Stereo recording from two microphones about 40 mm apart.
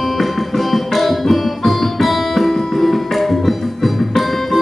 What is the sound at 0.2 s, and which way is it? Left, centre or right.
Music, centre.